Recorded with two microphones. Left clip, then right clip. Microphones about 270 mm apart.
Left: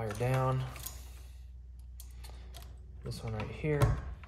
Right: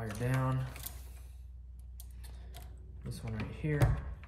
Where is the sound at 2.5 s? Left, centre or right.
Centre.